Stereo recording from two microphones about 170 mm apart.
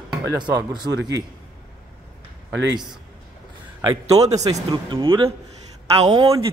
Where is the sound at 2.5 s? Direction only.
90° right.